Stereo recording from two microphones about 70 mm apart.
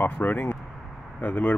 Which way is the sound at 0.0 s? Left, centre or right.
Left.